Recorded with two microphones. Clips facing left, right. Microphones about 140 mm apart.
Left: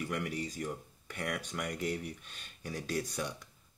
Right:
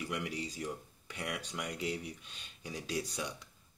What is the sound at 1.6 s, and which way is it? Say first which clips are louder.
Speech: left 2 dB; 50° left (ahead or behind).